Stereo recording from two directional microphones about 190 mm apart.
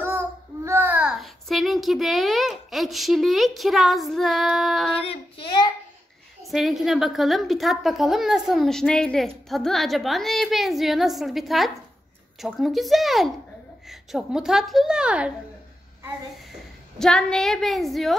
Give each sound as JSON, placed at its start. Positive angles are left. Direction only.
{"t": 0.0, "sound": "a child's voice", "side_deg": -10}
{"t": 5.0, "sound": "child singing", "side_deg": 30}
{"t": 6.4, "sound": "a woman's voice", "side_deg": 0}
{"t": 17.0, "sound": "a woman's voice", "side_deg": 5}